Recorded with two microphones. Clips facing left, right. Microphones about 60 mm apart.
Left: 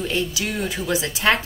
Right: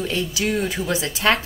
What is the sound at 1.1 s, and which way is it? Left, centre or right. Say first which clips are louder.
Speech: even; left.